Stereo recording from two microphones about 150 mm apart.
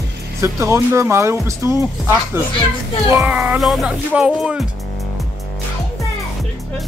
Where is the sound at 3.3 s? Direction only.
5° right (ahead or behind).